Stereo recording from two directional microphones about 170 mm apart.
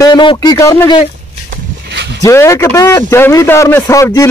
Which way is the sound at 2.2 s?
15° left (ahead or behind).